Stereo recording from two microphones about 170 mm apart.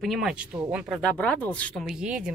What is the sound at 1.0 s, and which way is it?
Speech, 5° left (ahead or behind).